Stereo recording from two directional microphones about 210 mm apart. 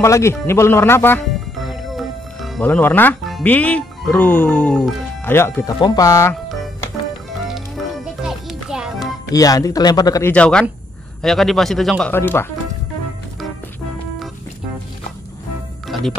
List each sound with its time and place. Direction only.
0.0 s speech: 15° left (ahead or behind)
1.2 s speech: centre (ahead or behind); by 6.3 s 15° left (ahead or behind)
7.4 s music: centre (ahead or behind)
9.0 s speech: 15° left (ahead or behind)
15.9 s music: centre (ahead or behind)